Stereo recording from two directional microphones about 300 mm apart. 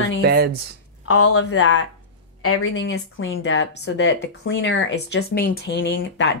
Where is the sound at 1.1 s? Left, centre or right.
Left.